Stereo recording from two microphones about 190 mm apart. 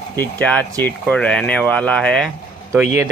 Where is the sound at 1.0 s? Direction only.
5° left (ahead or behind).